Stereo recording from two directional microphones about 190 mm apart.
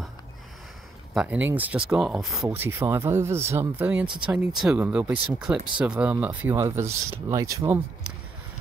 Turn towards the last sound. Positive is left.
turn(degrees=-15)  # may be behind; listen again after turning